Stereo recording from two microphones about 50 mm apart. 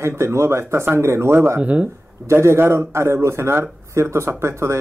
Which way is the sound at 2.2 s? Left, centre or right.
Right.